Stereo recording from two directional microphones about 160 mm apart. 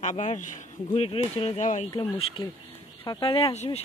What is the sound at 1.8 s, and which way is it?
A woman's voice, 35° left (ahead or behind).